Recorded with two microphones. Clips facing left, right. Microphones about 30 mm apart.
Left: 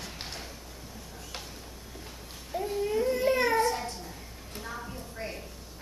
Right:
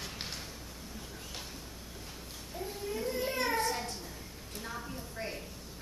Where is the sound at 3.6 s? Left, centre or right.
Centre.